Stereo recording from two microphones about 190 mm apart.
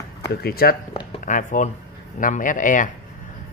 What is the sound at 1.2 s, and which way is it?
Speech, 45° left (ahead or behind).